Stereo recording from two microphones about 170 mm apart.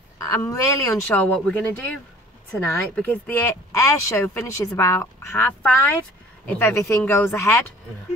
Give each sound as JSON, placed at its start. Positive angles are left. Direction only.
{"t": 0.2, "sound": "speech", "side_deg": 15}
{"t": 1.1, "sound": "speech", "side_deg": 5}